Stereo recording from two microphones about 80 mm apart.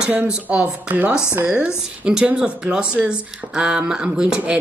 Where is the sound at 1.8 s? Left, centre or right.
Centre.